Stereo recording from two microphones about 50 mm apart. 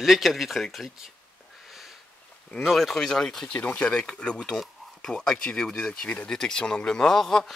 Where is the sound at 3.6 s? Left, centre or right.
Left.